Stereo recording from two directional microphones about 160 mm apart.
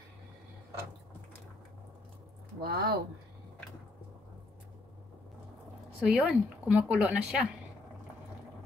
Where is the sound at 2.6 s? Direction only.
80° right.